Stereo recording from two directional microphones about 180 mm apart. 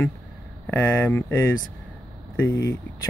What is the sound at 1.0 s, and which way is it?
Speech, 10° left (ahead or behind).